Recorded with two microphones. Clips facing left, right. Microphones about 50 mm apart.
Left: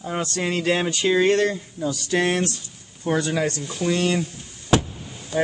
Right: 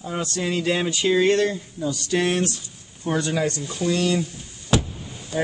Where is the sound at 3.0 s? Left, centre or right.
Left.